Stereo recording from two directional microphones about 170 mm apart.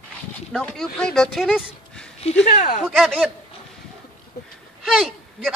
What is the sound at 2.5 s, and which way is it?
Speech, 55° left (ahead or behind).